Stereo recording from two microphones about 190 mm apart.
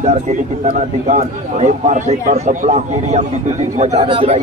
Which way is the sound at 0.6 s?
35° right (ahead or behind).